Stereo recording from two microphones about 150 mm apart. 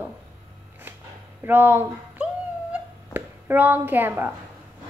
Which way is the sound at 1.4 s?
15° right (ahead or behind).